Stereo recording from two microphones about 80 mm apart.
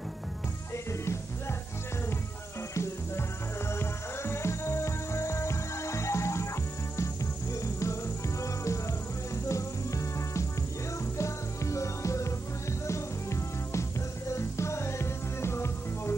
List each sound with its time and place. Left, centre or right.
2.7 s music: left